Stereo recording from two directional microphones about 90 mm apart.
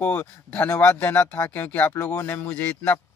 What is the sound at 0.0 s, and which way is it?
Speech, 15° left (ahead or behind).